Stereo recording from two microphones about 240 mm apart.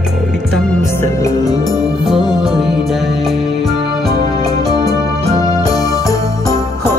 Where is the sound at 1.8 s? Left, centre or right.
Centre.